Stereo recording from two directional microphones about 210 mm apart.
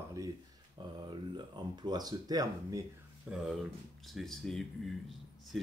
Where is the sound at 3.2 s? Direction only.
Centre (ahead or behind).